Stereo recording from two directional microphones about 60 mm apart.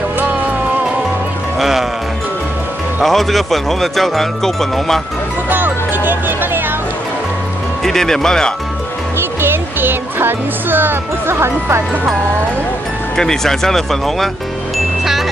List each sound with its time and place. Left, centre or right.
1.6 s music: centre
3.0 s speech: centre
5.5 s music: right
7.8 s speech: centre
9.4 s speech: right
13.1 s speech: centre